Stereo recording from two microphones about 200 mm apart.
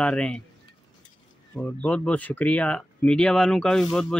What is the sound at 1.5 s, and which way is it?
Speech, 5° left (ahead or behind).